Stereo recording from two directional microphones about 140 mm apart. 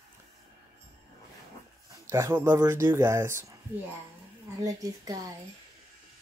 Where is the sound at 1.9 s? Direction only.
20° right (ahead or behind).